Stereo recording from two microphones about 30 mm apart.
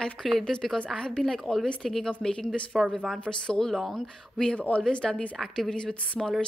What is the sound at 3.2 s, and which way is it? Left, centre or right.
Speech, left.